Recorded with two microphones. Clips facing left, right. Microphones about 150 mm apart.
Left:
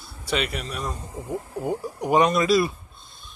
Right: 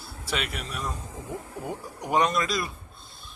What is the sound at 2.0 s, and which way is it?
Speech, 5° left (ahead or behind).